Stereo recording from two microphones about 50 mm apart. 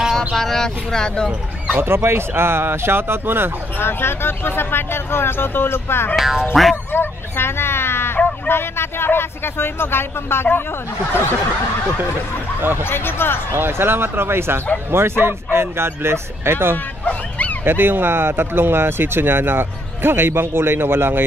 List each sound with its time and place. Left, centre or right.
0.1 s speech: centre
1.8 s speech: right
3.7 s speech: left
6.1 s speech: centre
6.9 s speech: left
12.8 s speech: left
13.5 s speech: right
17.0 s bow-wow: left
17.6 s speech: right